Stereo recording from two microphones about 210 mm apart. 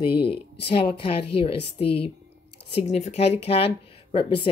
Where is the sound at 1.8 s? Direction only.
25° left (ahead or behind).